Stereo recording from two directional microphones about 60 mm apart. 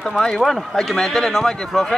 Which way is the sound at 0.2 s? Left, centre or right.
Centre.